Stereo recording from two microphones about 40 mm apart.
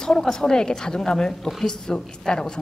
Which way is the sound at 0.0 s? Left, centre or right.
Centre.